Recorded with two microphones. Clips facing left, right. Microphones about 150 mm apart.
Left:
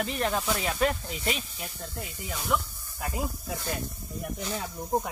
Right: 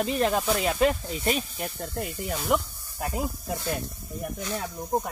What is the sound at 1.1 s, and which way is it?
Speech, 40° right (ahead or behind).